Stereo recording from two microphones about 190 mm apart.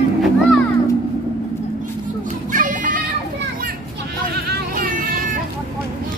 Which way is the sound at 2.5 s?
45° right (ahead or behind).